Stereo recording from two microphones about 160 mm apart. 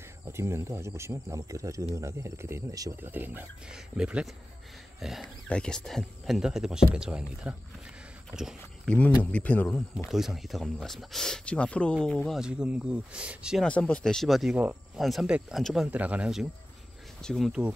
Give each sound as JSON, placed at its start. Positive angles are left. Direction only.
{"t": 0.3, "sound": "speech", "side_deg": -15}
{"t": 9.2, "sound": "speech", "side_deg": 10}
{"t": 9.9, "sound": "speech", "side_deg": 0}
{"t": 13.7, "sound": "speech", "side_deg": 5}